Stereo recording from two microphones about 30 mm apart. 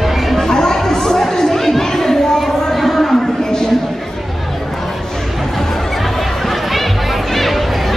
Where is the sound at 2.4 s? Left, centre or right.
Centre.